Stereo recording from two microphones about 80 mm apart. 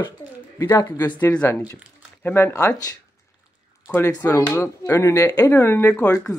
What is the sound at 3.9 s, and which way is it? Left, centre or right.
Speech, left.